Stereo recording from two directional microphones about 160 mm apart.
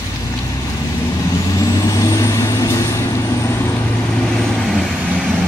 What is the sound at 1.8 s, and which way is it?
Vehicle, 20° left (ahead or behind).